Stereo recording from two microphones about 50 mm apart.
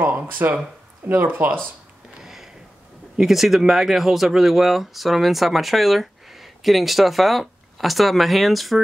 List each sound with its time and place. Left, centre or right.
0.0 s speech: right
2.1 s a sound: centre
3.2 s speech: centre